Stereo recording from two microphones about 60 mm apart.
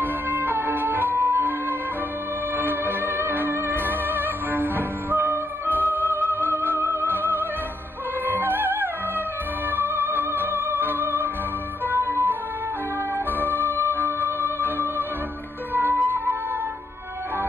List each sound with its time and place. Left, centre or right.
0.0 s music: right
13.4 s music: right